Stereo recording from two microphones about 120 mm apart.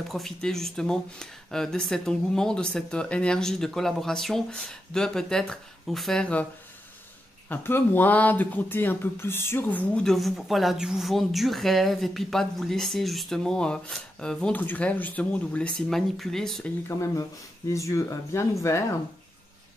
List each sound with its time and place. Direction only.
0.1 s speech: 5° left (ahead or behind)
7.4 s speech: 15° left (ahead or behind)
16.8 s speech: 25° left (ahead or behind)